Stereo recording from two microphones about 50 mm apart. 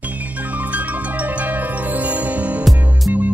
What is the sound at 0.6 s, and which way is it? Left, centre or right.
Music, right.